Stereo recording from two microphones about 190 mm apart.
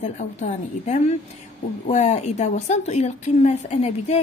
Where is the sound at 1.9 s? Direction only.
35° left (ahead or behind).